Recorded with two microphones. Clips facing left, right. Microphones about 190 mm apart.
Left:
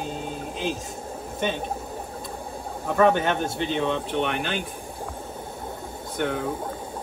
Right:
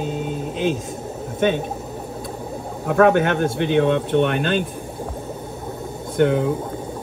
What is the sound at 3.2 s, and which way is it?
Speech, 60° right (ahead or behind).